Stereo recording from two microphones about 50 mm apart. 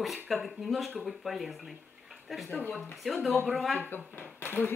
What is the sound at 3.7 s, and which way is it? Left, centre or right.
Speech, left.